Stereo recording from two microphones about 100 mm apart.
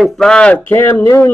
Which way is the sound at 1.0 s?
25° left (ahead or behind).